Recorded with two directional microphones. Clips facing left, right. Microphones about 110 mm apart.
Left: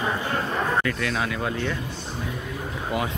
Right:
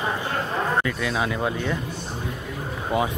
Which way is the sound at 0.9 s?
15° right (ahead or behind).